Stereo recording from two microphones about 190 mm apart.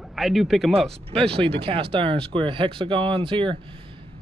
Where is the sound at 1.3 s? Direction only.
30° right (ahead or behind).